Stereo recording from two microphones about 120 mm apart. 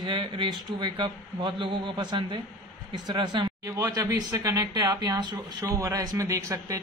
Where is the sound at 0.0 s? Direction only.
45° right (ahead or behind).